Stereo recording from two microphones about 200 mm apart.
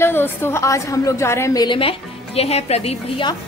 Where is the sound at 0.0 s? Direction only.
10° left (ahead or behind); by 3.3 s 30° left (ahead or behind).